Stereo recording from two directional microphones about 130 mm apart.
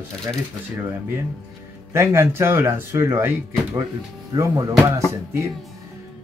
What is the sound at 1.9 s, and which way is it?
Speech, 20° right (ahead or behind).